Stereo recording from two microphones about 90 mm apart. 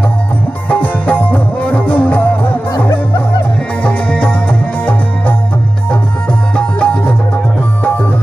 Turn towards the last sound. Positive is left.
turn(degrees=15)  # may be behind; listen again after turning